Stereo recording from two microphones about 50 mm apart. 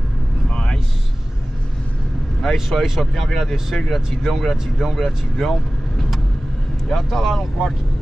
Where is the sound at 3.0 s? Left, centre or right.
Centre.